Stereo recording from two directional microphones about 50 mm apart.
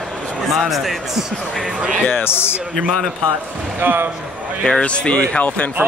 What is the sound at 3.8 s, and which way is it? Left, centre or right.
Speech, right.